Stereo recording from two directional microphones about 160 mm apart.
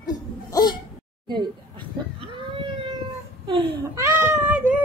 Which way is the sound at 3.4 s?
20° right (ahead or behind).